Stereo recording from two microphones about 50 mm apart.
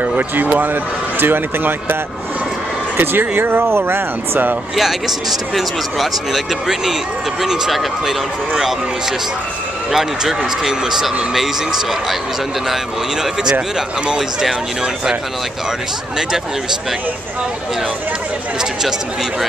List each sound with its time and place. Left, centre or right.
1.2 s speech: right
3.0 s speech: right
4.7 s speech: centre
9.8 s speech: centre
13.2 s speech: centre